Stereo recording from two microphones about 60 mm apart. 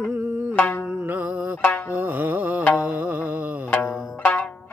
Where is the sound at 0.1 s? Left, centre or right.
Right.